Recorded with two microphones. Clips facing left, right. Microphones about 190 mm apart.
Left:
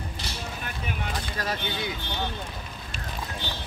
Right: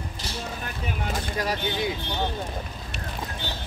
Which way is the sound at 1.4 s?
15° right (ahead or behind).